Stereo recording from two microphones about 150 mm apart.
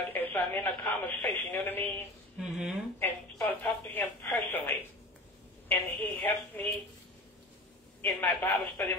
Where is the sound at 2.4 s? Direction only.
5° right (ahead or behind).